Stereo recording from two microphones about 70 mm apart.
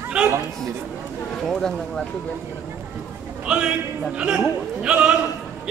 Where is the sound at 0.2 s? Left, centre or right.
Centre.